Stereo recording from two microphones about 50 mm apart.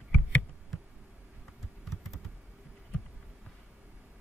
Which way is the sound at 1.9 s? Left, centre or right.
Centre.